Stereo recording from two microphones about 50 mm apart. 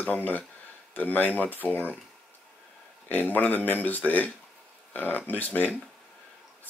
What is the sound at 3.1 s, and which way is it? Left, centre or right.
Speech, left.